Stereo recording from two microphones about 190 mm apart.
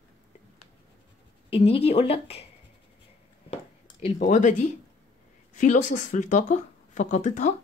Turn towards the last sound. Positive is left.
turn(degrees=40)  # may be behind; listen again after turning